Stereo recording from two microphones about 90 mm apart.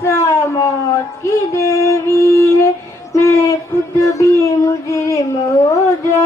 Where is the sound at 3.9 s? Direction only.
35° left (ahead or behind).